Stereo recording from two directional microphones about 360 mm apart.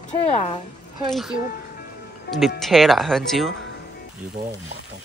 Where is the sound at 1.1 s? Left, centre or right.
Centre.